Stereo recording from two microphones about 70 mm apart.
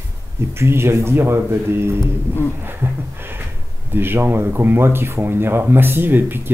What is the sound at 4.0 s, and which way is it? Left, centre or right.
Speech, right.